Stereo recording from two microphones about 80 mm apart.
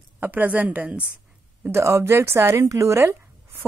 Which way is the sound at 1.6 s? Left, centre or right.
Right.